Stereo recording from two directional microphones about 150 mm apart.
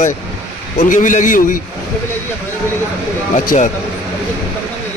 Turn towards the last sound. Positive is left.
turn(degrees=60)  # may be behind; listen again after turning